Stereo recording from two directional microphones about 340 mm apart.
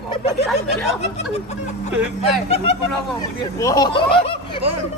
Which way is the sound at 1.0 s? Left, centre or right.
Centre.